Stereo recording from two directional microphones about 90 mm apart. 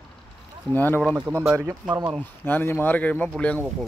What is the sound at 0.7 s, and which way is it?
Speech, 20° left (ahead or behind).